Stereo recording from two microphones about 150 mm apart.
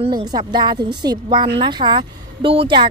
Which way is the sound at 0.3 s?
30° right (ahead or behind).